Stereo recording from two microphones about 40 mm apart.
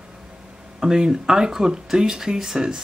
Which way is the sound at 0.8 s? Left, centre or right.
Centre.